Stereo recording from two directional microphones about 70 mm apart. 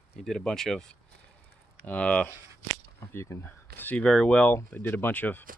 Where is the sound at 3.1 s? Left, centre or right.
Left.